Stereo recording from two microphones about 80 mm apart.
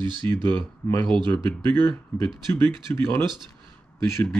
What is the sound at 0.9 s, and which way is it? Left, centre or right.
Speech, right.